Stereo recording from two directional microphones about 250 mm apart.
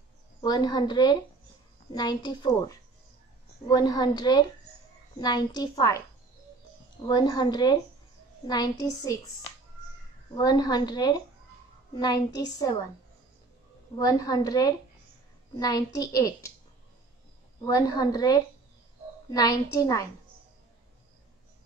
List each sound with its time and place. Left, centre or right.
0.4 s a woman's voice: centre
10.3 s a woman's voice: centre
13.9 s a woman's voice: centre
17.6 s a woman's voice: centre